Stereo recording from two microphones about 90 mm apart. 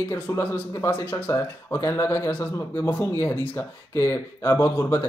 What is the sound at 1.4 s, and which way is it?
Speech, 30° left (ahead or behind).